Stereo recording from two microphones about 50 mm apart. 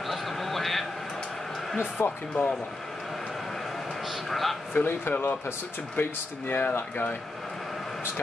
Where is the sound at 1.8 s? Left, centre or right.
Left.